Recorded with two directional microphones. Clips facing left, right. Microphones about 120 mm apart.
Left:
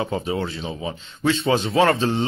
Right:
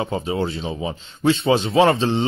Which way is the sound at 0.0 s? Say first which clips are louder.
Right 2 dB; 25° right (ahead or behind).